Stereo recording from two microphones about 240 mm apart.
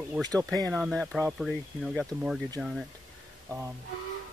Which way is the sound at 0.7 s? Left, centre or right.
Centre.